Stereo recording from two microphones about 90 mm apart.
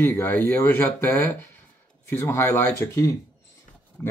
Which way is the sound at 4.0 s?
20° left (ahead or behind).